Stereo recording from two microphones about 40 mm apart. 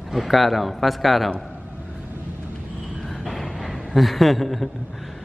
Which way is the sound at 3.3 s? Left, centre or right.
Centre.